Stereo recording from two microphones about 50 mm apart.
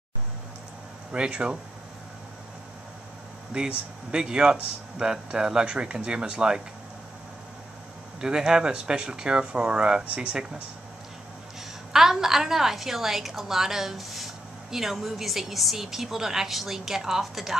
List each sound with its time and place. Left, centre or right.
1.1 s a woman's voice: centre
3.5 s a woman's voice: centre
8.2 s a woman's voice: centre
11.9 s a woman's voice: centre